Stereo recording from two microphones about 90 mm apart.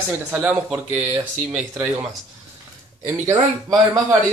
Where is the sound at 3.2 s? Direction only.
45° right (ahead or behind).